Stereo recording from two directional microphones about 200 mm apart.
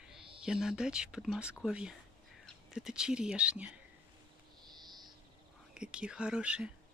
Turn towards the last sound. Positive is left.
turn(degrees=-5)  # may be behind; listen again after turning